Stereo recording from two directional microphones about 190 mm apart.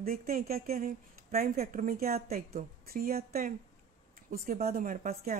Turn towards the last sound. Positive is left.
turn(degrees=-50)  # may be behind; listen again after turning